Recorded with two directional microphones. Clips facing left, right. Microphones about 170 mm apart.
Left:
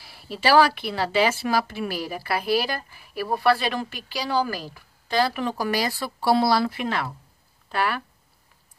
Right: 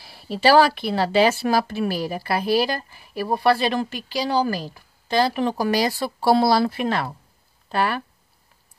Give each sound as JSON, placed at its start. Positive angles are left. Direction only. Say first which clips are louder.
{"t": 0.1, "sound": "speech", "louder": "right 3 dB", "side_deg": -30}